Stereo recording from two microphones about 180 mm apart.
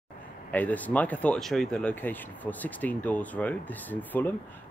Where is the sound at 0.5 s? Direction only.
10° left (ahead or behind).